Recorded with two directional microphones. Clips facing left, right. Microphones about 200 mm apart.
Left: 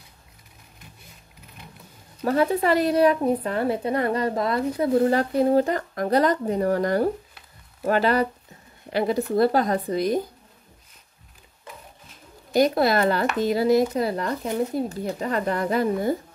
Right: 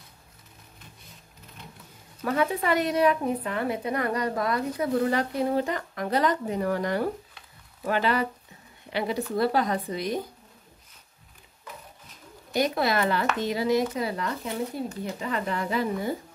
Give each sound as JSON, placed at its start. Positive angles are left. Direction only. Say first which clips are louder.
{"t": 2.2, "sound": "a woman's voice", "louder": "left 5 dB", "side_deg": 35}
{"t": 5.0, "sound": "a woman's voice", "louder": "left 5 dB", "side_deg": 40}
{"t": 12.5, "sound": "a woman's voice", "louder": "left 5 dB", "side_deg": 40}